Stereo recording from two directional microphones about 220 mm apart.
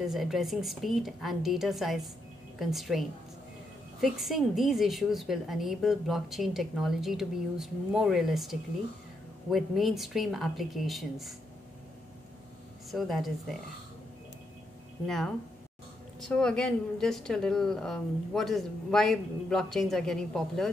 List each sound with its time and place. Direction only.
0.0 s a woman's voice: centre (ahead or behind)
12.9 s a woman's voice: centre (ahead or behind)
15.0 s a woman's voice: centre (ahead or behind)